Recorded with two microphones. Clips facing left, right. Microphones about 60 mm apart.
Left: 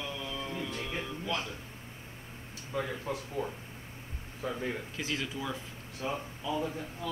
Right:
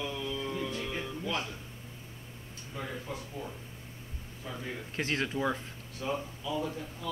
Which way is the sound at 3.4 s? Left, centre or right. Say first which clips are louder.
Left 5 dB; left.